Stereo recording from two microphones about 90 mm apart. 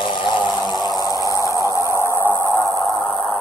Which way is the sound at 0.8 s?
45° left (ahead or behind).